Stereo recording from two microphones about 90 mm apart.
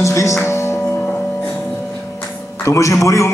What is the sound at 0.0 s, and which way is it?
Speech, 35° left (ahead or behind).